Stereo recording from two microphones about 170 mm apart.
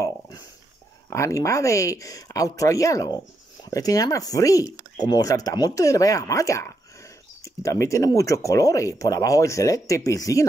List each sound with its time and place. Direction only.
1.1 s speech: 15° left (ahead or behind)